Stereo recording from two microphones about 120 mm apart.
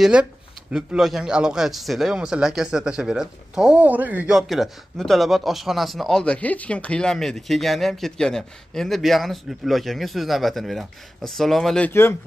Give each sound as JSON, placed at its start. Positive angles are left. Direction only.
{"t": 0.0, "sound": "speech", "side_deg": -10}
{"t": 4.4, "sound": "speech", "side_deg": 0}
{"t": 11.9, "sound": "speech", "side_deg": 20}